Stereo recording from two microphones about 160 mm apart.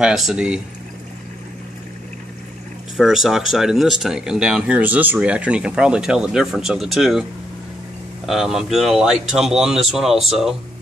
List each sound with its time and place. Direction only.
0.0 s speech: centre (ahead or behind)
3.0 s speech: centre (ahead or behind)
8.3 s speech: centre (ahead or behind)